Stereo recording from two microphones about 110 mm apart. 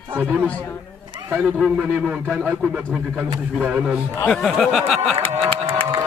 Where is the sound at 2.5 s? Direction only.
5° right (ahead or behind).